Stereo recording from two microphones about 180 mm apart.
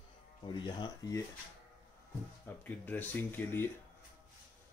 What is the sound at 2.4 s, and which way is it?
Speech, 10° left (ahead or behind).